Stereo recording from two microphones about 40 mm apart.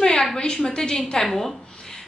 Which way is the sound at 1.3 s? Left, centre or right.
Centre.